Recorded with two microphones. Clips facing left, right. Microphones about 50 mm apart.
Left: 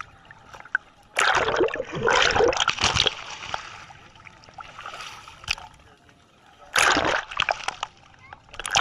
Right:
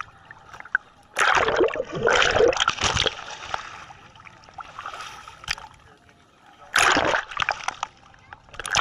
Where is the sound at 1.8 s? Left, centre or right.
Left.